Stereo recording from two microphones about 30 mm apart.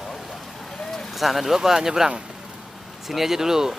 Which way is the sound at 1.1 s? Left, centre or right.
Centre.